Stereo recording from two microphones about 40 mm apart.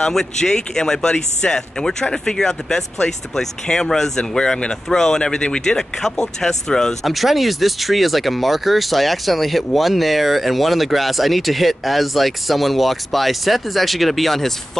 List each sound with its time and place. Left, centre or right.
0.0 s speech: centre
5.8 s speech: centre
7.1 s speech: centre